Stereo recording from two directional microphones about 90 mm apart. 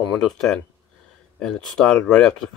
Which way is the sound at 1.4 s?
5° left (ahead or behind).